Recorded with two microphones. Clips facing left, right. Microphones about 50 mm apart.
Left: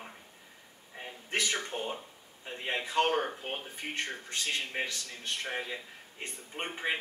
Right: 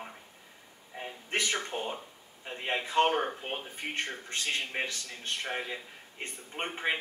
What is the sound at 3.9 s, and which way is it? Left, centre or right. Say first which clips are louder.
A man's voice: even; right.